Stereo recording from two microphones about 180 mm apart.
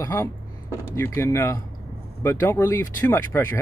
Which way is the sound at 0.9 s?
15° left (ahead or behind).